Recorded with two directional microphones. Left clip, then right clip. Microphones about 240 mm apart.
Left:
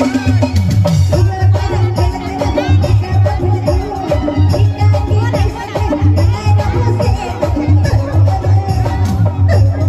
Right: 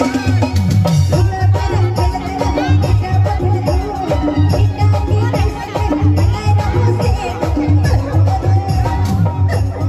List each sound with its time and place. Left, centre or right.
0.0 s music: centre